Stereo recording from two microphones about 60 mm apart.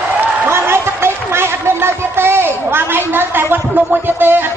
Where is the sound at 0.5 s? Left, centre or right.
Right.